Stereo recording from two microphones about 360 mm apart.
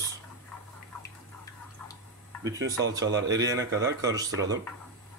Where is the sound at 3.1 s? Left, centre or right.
Right.